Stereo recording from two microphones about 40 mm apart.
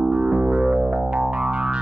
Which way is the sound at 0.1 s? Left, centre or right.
Right.